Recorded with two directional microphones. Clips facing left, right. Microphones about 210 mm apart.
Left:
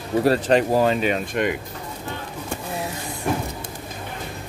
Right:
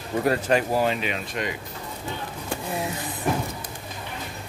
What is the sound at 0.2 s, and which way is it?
Speech, 35° left (ahead or behind).